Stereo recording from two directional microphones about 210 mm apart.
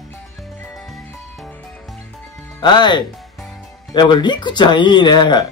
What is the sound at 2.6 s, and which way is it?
Speech, 20° left (ahead or behind).